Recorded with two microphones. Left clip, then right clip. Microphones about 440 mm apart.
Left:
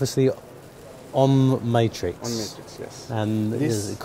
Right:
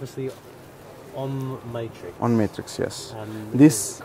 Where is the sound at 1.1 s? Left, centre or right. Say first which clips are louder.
Left 12 dB; left.